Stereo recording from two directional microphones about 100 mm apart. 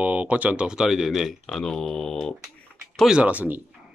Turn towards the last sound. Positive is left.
turn(degrees=-15)  # may be behind; listen again after turning